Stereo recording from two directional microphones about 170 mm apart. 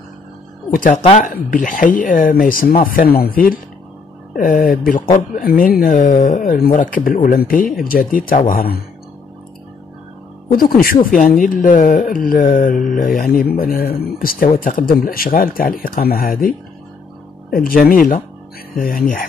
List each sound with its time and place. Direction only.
0.7 s speech: 50° left (ahead or behind)
10.5 s speech: 60° left (ahead or behind)